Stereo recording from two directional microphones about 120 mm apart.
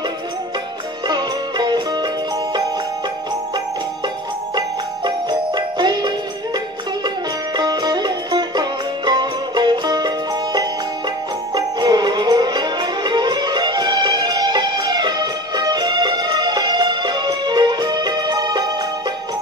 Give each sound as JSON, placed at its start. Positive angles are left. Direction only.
{"t": 1.0, "sound": "music", "side_deg": -35}
{"t": 4.6, "sound": "jingle bell", "side_deg": -35}
{"t": 7.5, "sound": "music", "side_deg": -35}